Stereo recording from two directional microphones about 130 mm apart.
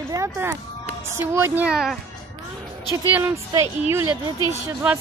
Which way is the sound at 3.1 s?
20° right (ahead or behind).